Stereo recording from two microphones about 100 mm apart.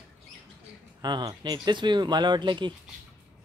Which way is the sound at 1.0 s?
45° right (ahead or behind).